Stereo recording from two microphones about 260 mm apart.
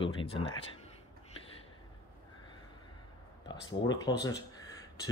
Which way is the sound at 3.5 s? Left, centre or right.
Centre.